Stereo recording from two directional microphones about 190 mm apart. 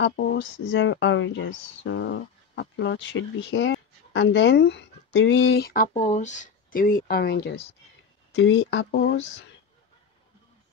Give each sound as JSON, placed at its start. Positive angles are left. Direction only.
{"t": 0.0, "sound": "speech", "side_deg": 70}
{"t": 5.9, "sound": "speech", "side_deg": 40}
{"t": 8.4, "sound": "speech", "side_deg": 80}